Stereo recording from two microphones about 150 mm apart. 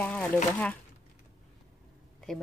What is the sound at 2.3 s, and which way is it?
Speech, 5° left (ahead or behind).